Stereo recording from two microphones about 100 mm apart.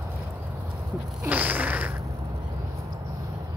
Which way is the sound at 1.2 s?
15° right (ahead or behind).